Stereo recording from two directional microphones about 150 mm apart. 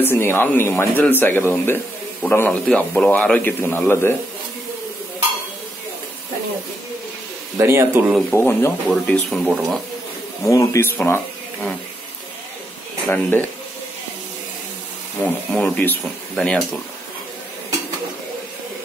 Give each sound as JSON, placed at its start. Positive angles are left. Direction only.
{"t": 0.0, "sound": "a man's voice", "side_deg": 15}
{"t": 7.5, "sound": "speech", "side_deg": -15}
{"t": 8.3, "sound": "a man's voice", "side_deg": 15}
{"t": 8.8, "sound": "speech", "side_deg": 5}
{"t": 10.4, "sound": "speech", "side_deg": 20}
{"t": 13.1, "sound": "a man's voice", "side_deg": 10}
{"t": 15.1, "sound": "a man's voice", "side_deg": 10}